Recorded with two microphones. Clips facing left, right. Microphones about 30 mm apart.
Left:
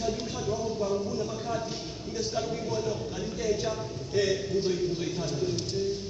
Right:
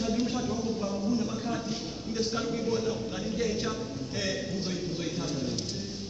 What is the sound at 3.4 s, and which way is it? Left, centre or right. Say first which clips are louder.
A man's voice: left 2 dB; right.